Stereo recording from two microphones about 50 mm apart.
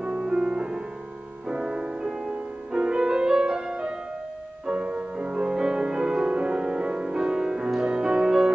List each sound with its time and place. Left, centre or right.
0.0 s music: centre